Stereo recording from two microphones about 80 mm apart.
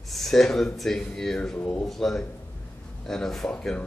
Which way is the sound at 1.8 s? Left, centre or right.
Centre.